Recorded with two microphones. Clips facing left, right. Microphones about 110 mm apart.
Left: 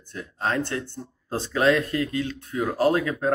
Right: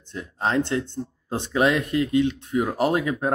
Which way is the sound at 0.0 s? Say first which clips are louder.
Right 2 dB; 20° right (ahead or behind).